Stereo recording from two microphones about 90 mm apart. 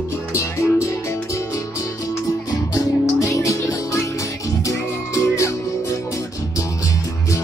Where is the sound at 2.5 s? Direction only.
35° left (ahead or behind).